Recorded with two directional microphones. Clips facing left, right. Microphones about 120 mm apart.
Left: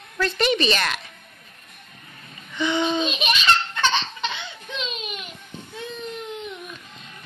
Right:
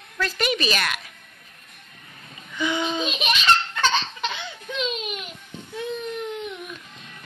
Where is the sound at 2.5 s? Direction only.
5° right (ahead or behind).